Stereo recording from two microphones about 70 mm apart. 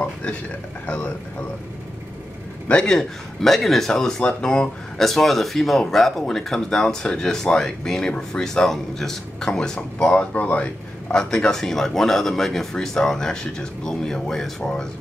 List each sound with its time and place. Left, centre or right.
0.0 s a man's voice: left
2.7 s speech: centre
11.1 s speech: centre
14.6 s speech: centre